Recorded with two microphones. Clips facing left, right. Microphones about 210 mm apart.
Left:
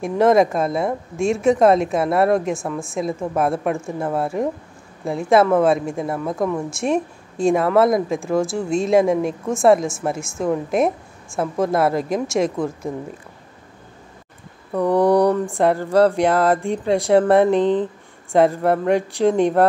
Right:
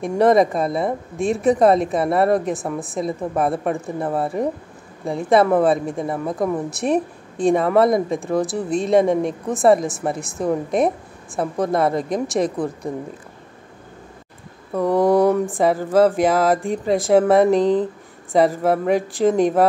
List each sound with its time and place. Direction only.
0.2 s speech: centre (ahead or behind)
14.7 s speech: centre (ahead or behind)
17.6 s speech: 40° right (ahead or behind)
18.3 s speech: centre (ahead or behind)